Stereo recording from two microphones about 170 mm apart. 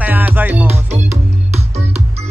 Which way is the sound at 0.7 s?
40° right (ahead or behind).